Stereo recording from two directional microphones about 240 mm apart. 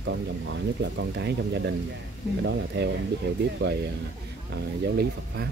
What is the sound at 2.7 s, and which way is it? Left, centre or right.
Speech, right.